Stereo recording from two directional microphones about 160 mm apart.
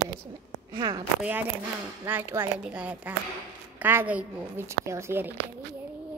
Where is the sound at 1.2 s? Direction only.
10° right (ahead or behind).